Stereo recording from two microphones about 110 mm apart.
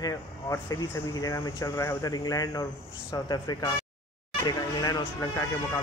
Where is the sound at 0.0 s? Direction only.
30° left (ahead or behind).